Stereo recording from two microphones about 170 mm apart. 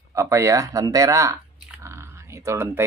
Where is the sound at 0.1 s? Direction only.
15° right (ahead or behind).